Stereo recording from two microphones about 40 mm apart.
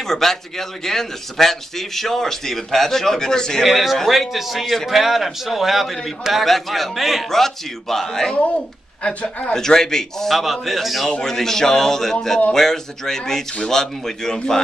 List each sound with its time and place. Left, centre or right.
0.0 s a man's voice: centre
3.6 s a man's voice: centre
8.4 s speech: left
9.5 s a man's voice: centre
10.3 s a man's voice: centre
11.1 s a man's voice: centre